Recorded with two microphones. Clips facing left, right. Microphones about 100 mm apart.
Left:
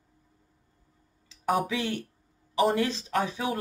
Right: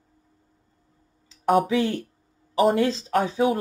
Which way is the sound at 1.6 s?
35° right (ahead or behind).